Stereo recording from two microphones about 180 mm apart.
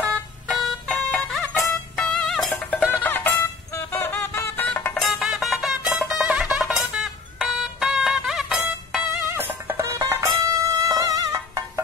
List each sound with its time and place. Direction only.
0.5 s music: centre (ahead or behind); by 11.8 s 15° right (ahead or behind)